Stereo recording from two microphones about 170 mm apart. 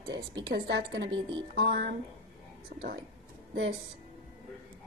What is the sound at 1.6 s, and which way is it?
A woman's voice, 70° right (ahead or behind).